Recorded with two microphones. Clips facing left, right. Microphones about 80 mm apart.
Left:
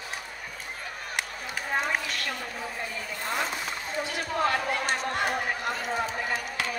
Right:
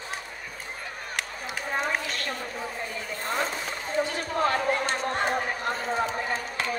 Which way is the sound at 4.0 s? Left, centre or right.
Right.